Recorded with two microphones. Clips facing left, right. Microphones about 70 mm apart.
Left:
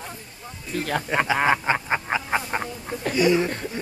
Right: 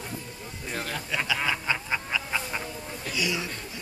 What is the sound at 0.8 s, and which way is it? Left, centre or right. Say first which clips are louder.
Speech: left 9 dB; left.